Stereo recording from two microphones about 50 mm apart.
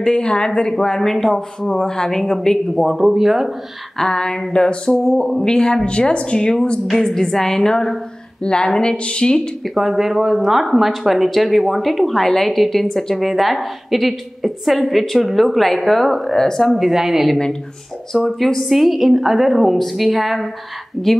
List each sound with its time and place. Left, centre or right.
0.0 s speech: centre
4.0 s speech: centre
9.8 s a woman's voice: centre